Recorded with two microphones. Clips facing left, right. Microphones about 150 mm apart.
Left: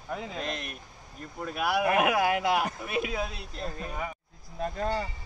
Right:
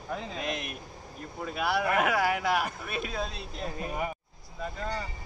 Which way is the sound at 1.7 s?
15° left (ahead or behind).